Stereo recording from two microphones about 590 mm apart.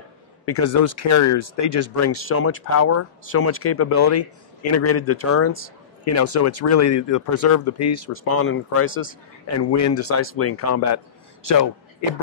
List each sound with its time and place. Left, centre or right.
0.5 s speech: left